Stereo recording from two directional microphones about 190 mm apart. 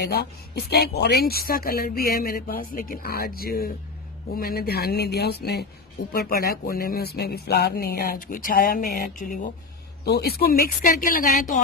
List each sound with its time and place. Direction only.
0.0 s speech: 60° left (ahead or behind)
10.0 s speech: 55° left (ahead or behind)